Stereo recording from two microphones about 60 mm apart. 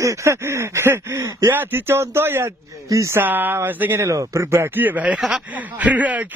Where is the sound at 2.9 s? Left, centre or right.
Right.